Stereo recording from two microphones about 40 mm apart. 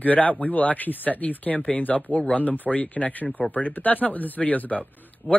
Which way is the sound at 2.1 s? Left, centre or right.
Left.